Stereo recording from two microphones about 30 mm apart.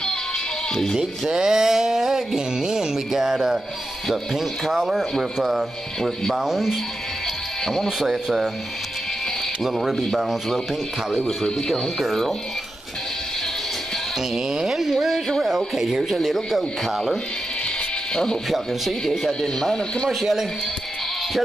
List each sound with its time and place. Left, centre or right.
1.3 s speech: right
4.1 s speech: centre
7.6 s speech: centre
8.0 s speech: centre
9.6 s speech: centre
11.7 s speech: centre
14.3 s speech: right
14.7 s speech: centre
16.3 s speech: centre
18.1 s speech: left
18.5 s a man's voice: centre
19.4 s speech: centre
20.1 s speech: centre